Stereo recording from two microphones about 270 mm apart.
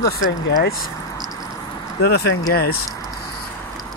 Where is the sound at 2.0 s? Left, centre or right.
Left.